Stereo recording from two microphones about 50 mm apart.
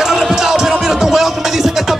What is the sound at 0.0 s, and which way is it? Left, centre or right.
Music, centre.